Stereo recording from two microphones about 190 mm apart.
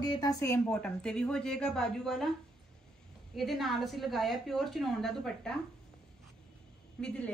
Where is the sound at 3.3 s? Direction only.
Centre (ahead or behind).